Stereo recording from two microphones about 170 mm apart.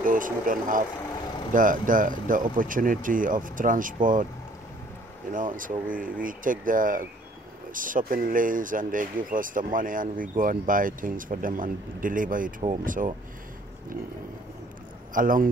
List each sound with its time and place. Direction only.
0.0 s speech: 55° right (ahead or behind)
5.3 s speech: 50° right (ahead or behind)
15.1 s speech: 55° right (ahead or behind)